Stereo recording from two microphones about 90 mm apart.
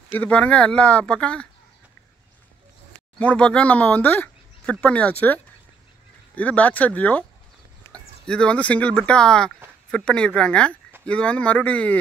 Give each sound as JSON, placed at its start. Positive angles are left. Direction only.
{"t": 0.1, "sound": "speech", "side_deg": 15}
{"t": 3.2, "sound": "speech", "side_deg": 15}